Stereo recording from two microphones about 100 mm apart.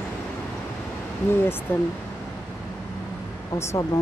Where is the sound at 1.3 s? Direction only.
20° left (ahead or behind).